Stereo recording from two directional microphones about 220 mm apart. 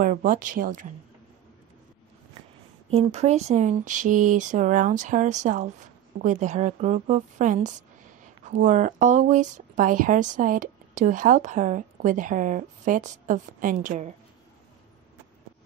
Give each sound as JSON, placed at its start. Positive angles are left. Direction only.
{"t": 0.0, "sound": "speech", "side_deg": -40}
{"t": 2.9, "sound": "speech", "side_deg": -30}